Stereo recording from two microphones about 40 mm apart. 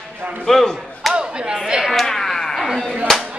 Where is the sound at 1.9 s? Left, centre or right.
Centre.